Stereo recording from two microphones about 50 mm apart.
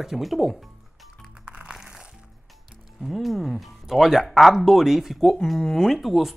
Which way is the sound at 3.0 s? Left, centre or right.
Centre.